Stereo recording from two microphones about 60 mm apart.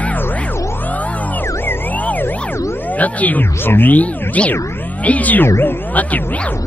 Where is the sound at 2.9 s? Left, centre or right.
Left.